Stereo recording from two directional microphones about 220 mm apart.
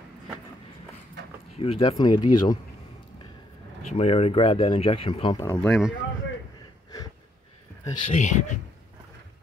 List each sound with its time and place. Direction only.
1.6 s speech: 25° left (ahead or behind)
3.9 s speech: 25° left (ahead or behind)
5.5 s speech: 5° left (ahead or behind)
8.1 s speech: 30° left (ahead or behind)